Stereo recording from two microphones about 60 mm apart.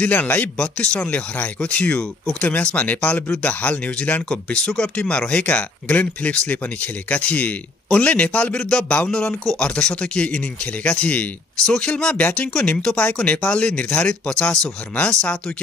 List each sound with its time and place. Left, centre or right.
0.0 s speech: left
12.7 s speech: centre
13.0 s speech: left